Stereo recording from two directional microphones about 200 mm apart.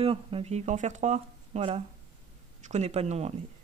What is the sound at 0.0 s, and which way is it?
Speech, 30° right (ahead or behind).